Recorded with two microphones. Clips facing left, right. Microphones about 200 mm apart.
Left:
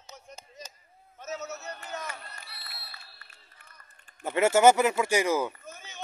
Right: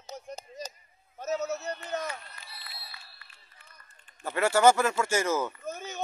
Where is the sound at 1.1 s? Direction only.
35° right (ahead or behind).